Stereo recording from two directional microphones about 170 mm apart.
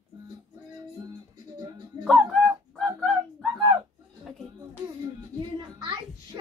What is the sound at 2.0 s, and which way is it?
Music, centre (ahead or behind).